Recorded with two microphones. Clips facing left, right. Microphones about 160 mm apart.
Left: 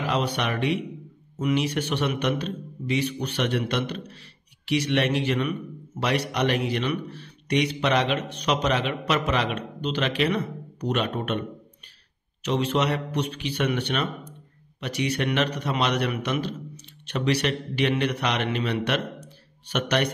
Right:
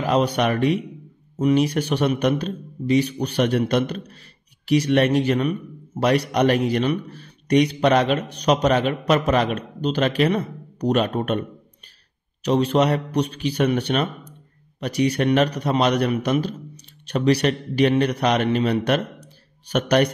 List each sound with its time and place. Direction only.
0.0 s a man's voice: 40° right (ahead or behind)
12.4 s a man's voice: 40° right (ahead or behind)